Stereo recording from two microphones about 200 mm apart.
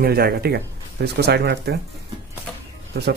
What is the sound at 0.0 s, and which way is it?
Speech, 50° right (ahead or behind).